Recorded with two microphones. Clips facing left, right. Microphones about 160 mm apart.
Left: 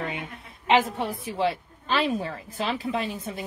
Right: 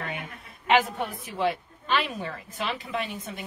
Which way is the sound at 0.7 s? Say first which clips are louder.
Left 1 dB; 30° left (ahead or behind).